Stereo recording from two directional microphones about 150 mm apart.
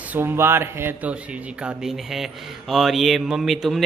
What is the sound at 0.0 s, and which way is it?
Speech, 15° right (ahead or behind).